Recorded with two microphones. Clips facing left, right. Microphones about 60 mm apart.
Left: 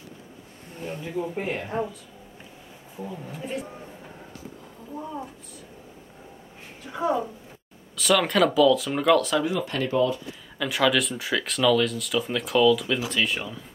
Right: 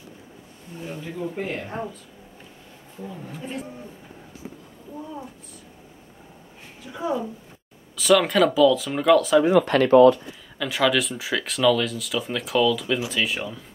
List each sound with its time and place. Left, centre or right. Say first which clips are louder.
0.9 s speech: left 1 dB; centre
7.9 s speech: right 3 dB; centre
9.5 s speech: right 10 dB; right
10.6 s speech: right 1 dB; centre